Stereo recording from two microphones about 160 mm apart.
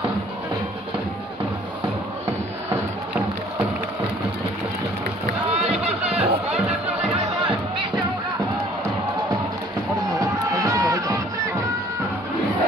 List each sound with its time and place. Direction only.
5.7 s music: 40° right (ahead or behind)
10.2 s music: 20° right (ahead or behind)